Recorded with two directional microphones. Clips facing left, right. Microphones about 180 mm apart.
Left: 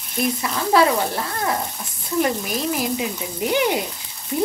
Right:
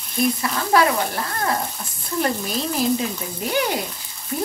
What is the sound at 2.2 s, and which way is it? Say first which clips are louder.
Frying: left 1 dB; 15° left (ahead or behind).